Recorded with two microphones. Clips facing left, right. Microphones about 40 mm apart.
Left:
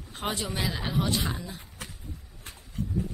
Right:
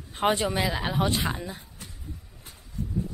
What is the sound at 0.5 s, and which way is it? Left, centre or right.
Speech, centre.